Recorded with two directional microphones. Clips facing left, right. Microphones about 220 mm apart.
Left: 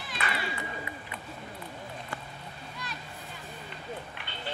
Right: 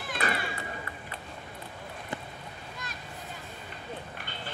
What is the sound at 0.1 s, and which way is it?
Cat, 50° right (ahead or behind).